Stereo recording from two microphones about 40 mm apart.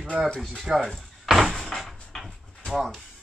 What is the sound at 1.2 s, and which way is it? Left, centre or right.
Door, centre.